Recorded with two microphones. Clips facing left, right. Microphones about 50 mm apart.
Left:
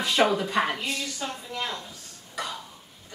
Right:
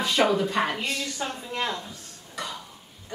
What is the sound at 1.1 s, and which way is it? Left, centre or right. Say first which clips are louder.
Speech: right 2 dB; right.